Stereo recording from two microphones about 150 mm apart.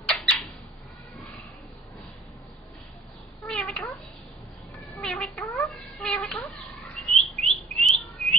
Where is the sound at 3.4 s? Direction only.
5° left (ahead or behind).